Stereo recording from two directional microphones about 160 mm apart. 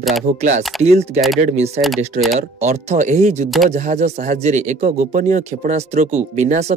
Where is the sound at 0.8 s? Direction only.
40° right (ahead or behind).